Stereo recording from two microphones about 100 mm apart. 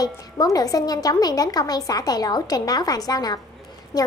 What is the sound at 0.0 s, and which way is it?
A woman's voice, 40° left (ahead or behind).